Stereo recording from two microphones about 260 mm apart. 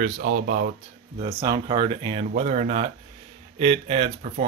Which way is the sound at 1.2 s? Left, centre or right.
Centre.